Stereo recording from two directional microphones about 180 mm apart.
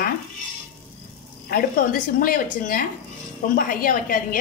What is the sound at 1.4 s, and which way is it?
A woman's voice, 50° left (ahead or behind).